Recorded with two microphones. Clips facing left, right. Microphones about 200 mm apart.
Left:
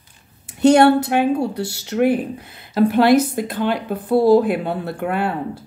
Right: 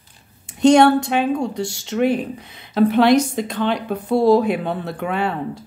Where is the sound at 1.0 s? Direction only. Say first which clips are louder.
Left 2 dB; 5° left (ahead or behind).